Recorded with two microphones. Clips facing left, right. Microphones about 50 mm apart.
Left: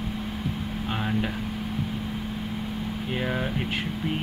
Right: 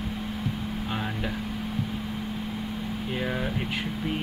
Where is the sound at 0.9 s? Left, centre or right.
Centre.